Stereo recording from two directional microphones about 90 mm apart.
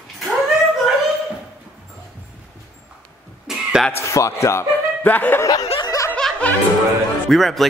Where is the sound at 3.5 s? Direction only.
5° right (ahead or behind).